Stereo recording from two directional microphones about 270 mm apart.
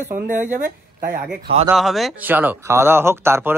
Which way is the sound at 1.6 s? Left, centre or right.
Centre.